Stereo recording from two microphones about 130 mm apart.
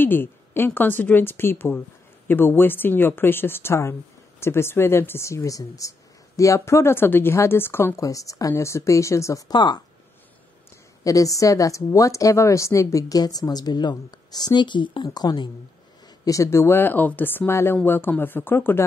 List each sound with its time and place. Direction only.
0.0 s a woman's voice: 15° left (ahead or behind); by 9.8 s 35° left (ahead or behind)
11.1 s a woman's voice: 25° left (ahead or behind)
16.3 s a woman's voice: 25° left (ahead or behind)